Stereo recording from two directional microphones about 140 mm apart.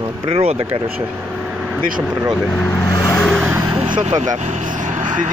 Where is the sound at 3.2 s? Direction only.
Centre (ahead or behind).